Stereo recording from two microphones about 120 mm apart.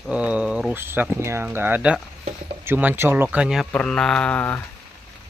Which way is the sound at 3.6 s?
10° left (ahead or behind).